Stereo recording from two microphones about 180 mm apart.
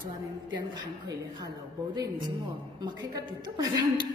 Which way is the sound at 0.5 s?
25° right (ahead or behind).